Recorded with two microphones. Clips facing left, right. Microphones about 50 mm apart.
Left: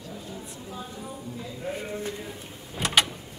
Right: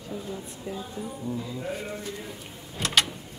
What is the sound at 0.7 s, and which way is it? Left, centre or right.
Speech, centre.